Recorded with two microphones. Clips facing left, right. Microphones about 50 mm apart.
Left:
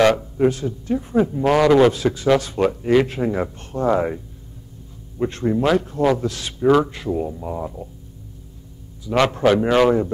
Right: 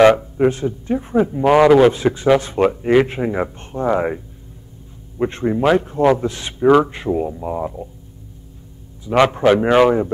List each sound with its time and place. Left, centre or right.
0.0 s a man's voice: right
5.2 s a man's voice: right
9.0 s a man's voice: right